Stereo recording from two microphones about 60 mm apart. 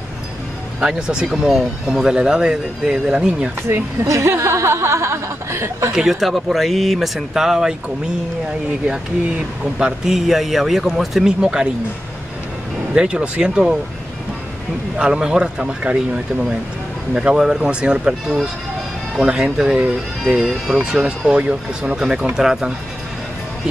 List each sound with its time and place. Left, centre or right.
0.8 s speech: centre
3.6 s speech: right
4.1 s speech: right
5.9 s a man's voice: centre
9.8 s a man's voice: centre
12.9 s speech: centre
15.0 s speech: centre